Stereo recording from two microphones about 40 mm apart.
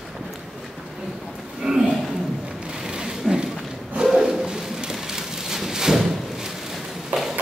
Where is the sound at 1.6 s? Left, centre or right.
Centre.